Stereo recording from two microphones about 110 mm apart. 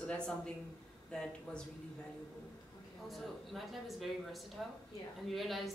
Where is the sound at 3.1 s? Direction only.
Centre (ahead or behind).